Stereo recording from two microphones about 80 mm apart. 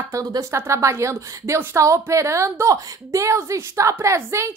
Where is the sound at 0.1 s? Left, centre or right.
Right.